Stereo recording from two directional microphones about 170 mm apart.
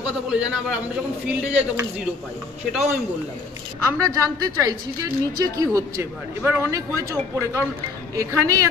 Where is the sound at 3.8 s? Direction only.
20° right (ahead or behind).